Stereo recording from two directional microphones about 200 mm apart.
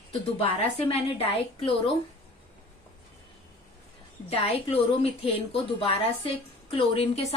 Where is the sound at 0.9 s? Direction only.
30° left (ahead or behind).